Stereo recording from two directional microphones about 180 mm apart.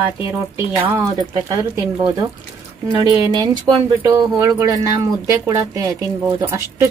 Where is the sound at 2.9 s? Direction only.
25° left (ahead or behind).